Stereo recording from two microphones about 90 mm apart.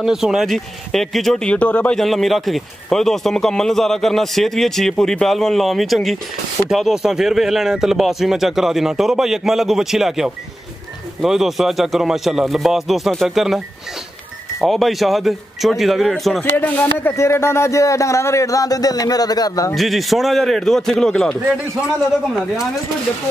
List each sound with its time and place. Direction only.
0.0 s speech: 5° right (ahead or behind); by 2.0 s 15° left (ahead or behind)
2.0 s speech: centre (ahead or behind)
14.6 s speech: centre (ahead or behind)
16.5 s speech: 20° left (ahead or behind); by 19.7 s 45° left (ahead or behind)
19.7 s speech: centre (ahead or behind)